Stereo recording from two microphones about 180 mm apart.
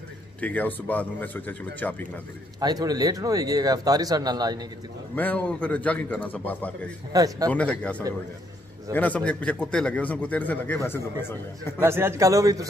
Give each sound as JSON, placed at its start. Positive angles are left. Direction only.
{"t": 0.4, "sound": "a man's voice", "side_deg": 10}
{"t": 2.6, "sound": "speech", "side_deg": -20}
{"t": 5.1, "sound": "a man's voice", "side_deg": 10}
{"t": 7.1, "sound": "speech", "side_deg": -20}
{"t": 7.5, "sound": "a man's voice", "side_deg": 5}
{"t": 11.8, "sound": "a man's voice", "side_deg": -15}